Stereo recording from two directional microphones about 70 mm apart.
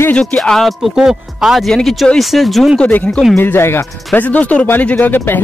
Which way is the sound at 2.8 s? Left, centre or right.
Left.